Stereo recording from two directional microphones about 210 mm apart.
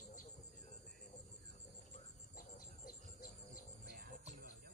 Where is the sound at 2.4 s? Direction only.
40° left (ahead or behind).